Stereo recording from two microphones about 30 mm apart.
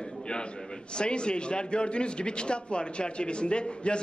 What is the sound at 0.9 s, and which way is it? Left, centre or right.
A man's voice, left.